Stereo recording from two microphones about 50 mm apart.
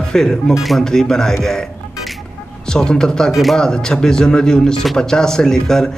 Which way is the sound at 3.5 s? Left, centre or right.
Centre.